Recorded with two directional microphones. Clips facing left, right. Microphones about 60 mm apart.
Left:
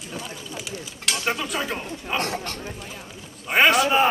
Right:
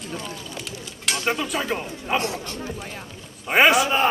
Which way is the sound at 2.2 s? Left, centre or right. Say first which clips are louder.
Even; left.